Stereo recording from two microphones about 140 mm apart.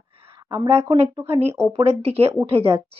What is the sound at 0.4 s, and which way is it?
A woman's voice, 40° right (ahead or behind).